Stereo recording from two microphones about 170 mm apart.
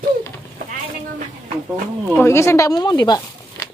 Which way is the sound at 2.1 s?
15° left (ahead or behind).